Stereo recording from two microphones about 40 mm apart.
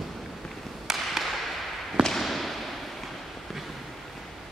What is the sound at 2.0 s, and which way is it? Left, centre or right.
Basketball bounce, centre.